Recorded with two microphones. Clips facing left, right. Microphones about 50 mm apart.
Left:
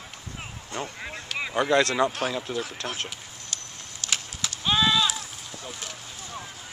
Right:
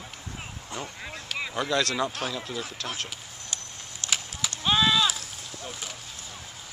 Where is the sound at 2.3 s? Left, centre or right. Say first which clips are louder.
Left 4 dB; left.